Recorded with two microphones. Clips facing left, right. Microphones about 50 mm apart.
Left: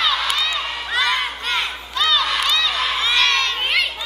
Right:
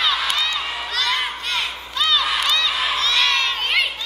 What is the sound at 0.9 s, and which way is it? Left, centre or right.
Crowd, centre.